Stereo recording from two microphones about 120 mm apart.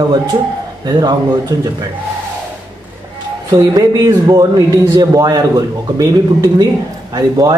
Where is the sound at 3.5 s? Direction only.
30° right (ahead or behind).